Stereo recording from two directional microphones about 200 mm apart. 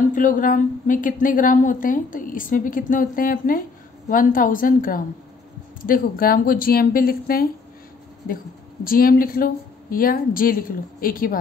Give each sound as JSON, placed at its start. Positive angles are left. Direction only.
{"t": 0.1, "sound": "a woman's voice", "side_deg": 40}
{"t": 8.8, "sound": "a woman's voice", "side_deg": 45}